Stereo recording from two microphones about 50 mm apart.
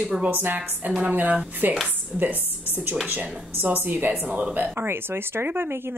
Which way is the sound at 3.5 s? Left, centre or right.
Right.